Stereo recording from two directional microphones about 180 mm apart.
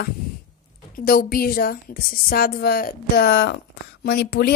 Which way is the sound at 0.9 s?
55° left (ahead or behind).